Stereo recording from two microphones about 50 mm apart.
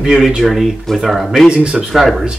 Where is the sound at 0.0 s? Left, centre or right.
Centre.